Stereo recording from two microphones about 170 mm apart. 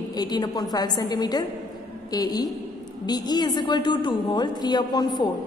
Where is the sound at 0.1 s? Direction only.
25° left (ahead or behind).